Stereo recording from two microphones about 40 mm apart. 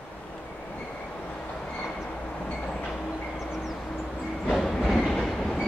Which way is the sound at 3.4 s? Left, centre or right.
Centre.